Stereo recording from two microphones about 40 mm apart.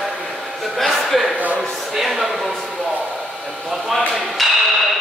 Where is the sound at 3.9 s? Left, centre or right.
Centre.